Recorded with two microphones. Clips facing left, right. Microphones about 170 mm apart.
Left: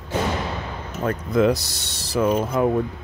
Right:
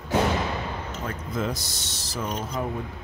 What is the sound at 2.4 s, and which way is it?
Speech, 55° left (ahead or behind).